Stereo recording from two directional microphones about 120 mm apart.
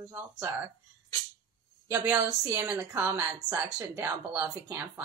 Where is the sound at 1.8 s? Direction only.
20° right (ahead or behind).